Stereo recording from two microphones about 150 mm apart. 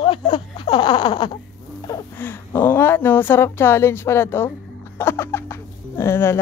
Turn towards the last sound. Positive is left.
turn(degrees=15)  # may be behind; listen again after turning